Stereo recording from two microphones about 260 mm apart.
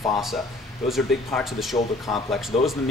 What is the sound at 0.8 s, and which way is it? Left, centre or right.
Speech, centre.